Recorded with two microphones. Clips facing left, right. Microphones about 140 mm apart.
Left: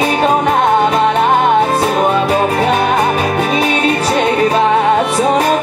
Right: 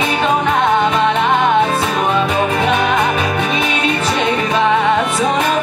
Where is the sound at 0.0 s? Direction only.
40° left (ahead or behind).